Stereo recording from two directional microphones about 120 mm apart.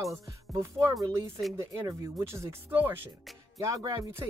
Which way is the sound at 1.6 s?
25° right (ahead or behind).